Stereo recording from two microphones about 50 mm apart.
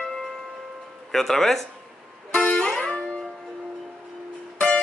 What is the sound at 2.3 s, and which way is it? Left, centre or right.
Music, left.